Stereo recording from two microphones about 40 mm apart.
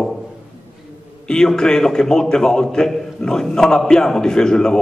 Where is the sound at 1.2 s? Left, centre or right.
Centre.